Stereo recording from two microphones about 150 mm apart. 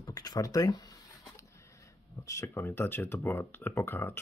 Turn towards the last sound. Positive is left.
turn(degrees=15)  # may be behind; listen again after turning